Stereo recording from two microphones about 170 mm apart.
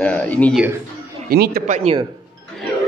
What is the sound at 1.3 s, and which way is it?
Speech, 65° right (ahead or behind).